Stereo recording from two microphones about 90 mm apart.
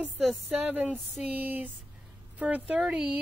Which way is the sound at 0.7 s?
15° right (ahead or behind).